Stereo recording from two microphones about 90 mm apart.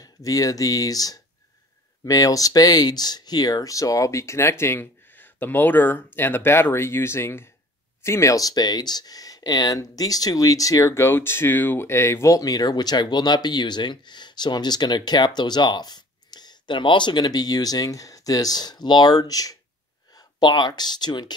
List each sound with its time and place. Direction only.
0.0 s speech: 40° left (ahead or behind)